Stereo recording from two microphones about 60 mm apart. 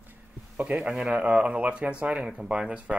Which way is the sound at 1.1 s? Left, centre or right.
Centre.